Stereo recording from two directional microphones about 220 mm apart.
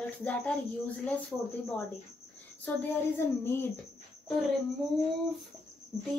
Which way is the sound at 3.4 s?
10° left (ahead or behind).